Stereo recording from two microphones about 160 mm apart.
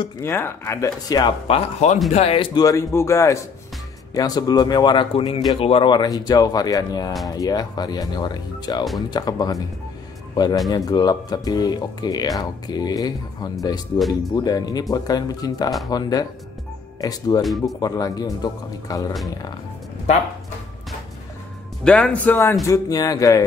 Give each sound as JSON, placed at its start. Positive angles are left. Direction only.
{"t": 0.2, "sound": "speech", "side_deg": 15}
{"t": 1.5, "sound": "speech", "side_deg": 45}
{"t": 17.4, "sound": "speech", "side_deg": 0}
{"t": 17.7, "sound": "speech", "side_deg": 25}
{"t": 21.8, "sound": "speech", "side_deg": 5}